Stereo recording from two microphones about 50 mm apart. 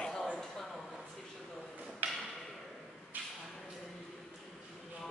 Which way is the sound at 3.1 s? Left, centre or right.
Right.